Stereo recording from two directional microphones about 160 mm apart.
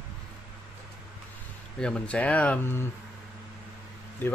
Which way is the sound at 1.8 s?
5° left (ahead or behind).